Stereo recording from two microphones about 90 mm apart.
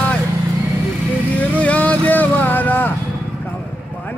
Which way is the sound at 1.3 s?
15° left (ahead or behind).